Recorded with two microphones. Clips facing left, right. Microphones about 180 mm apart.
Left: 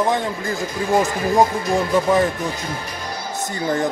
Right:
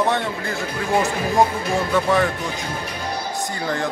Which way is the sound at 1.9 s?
20° left (ahead or behind).